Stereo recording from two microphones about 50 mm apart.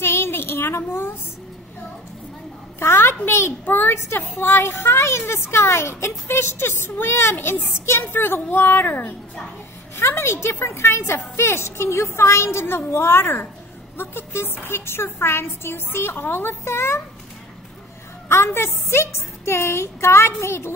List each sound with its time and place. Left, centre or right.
0.0 s speech: left
2.8 s a woman's voice: left
3.3 s speech: left
3.6 s a woman's voice: left
3.9 s a woman's voice: left
4.6 s speech: left
8.0 s a woman's voice: left
9.9 s speech: left
18.3 s speech: left